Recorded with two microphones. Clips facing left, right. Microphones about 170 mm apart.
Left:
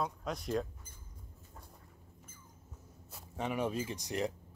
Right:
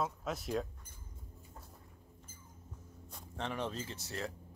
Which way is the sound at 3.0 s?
5° left (ahead or behind).